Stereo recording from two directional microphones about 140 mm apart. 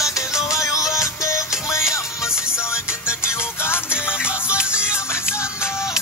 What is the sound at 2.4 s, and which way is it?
Music, 20° left (ahead or behind).